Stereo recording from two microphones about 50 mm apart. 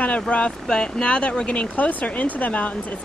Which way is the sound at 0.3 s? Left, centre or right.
Left.